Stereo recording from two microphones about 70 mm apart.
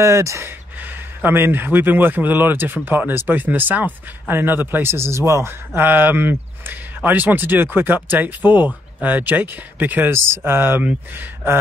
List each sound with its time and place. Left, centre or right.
0.0 s speech: right
0.7 s speech: right
5.8 s speech: right
10.1 s speech: right
10.8 s speech: right